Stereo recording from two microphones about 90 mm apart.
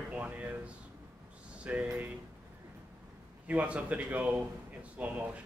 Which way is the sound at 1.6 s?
15° right (ahead or behind).